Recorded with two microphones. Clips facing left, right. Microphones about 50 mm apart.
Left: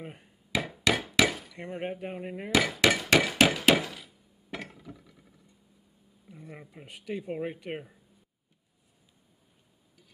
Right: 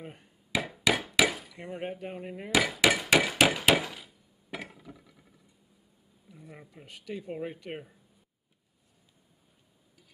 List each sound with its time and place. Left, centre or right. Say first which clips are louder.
0.0 s speech: left 2 dB; centre
0.5 s hammer: even; centre
1.6 s speech: left 2 dB; centre
2.5 s hammer: even; centre
6.4 s speech: left 3 dB; centre